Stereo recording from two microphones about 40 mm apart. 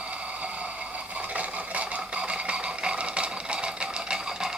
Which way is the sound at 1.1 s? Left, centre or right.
Right.